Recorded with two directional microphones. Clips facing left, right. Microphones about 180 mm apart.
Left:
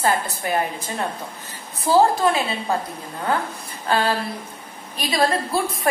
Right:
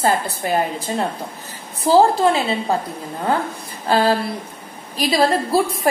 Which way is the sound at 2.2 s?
25° right (ahead or behind).